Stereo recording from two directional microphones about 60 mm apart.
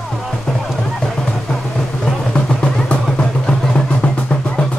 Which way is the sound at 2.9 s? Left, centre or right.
Centre.